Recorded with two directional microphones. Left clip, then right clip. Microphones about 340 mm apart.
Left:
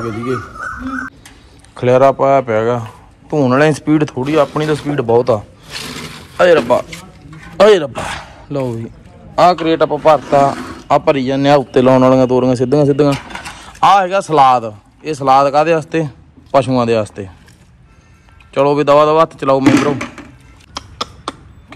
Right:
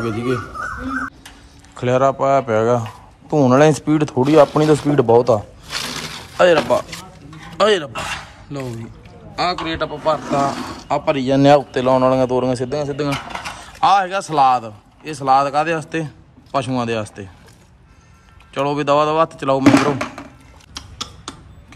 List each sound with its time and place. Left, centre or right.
0.0 s speech: centre
1.8 s speech: centre
7.5 s a sound: centre
9.3 s a man's voice: centre
10.5 s a sound: right
10.9 s a man's voice: centre
18.5 s speech: centre
19.6 s speech: right
20.7 s finger snapping: centre